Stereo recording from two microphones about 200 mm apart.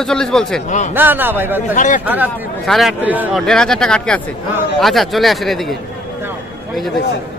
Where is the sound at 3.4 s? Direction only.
5° left (ahead or behind).